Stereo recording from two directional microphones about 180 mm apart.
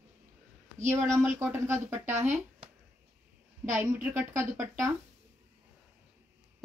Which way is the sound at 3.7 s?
10° right (ahead or behind).